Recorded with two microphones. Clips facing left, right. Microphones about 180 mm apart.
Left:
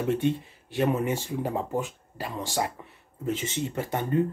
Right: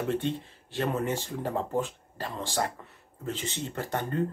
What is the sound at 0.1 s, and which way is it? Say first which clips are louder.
Speech: left 4 dB; 15° left (ahead or behind).